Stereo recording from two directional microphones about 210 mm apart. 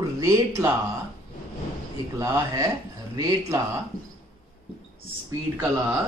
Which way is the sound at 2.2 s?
15° right (ahead or behind).